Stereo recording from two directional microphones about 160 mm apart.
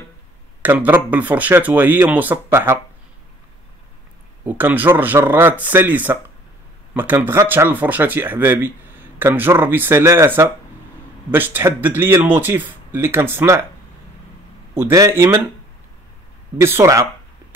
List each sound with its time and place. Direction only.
0.6 s speech: 10° right (ahead or behind)
4.5 s speech: 10° right (ahead or behind)
14.7 s speech: 20° right (ahead or behind)
16.5 s speech: 15° right (ahead or behind)